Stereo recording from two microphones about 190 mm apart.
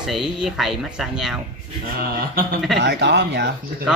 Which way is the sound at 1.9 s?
50° right (ahead or behind).